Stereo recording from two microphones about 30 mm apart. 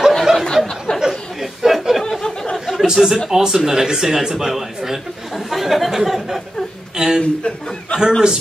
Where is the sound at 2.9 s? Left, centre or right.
Right.